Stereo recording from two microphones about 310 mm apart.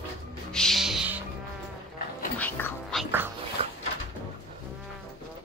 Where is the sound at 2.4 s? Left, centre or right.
Centre.